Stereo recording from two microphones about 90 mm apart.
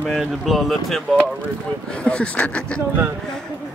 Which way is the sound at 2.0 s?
15° left (ahead or behind).